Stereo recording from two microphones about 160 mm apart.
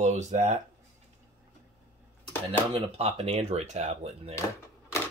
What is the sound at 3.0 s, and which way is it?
Speech, 40° right (ahead or behind).